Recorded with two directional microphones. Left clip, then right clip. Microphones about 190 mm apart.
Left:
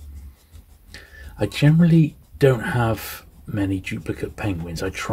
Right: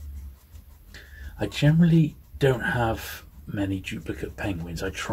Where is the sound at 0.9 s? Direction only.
55° left (ahead or behind).